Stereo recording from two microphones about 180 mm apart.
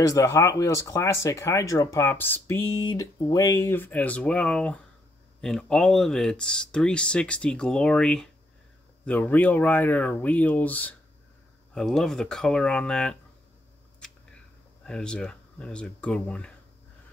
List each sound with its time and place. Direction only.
0.0 s speech: 20° left (ahead or behind); by 13.1 s 5° left (ahead or behind)
14.9 s speech: 5° left (ahead or behind)